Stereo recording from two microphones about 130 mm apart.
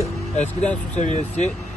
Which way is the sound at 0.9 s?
65° left (ahead or behind).